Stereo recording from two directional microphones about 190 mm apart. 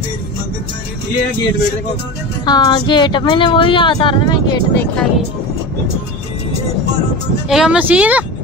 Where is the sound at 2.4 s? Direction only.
20° left (ahead or behind).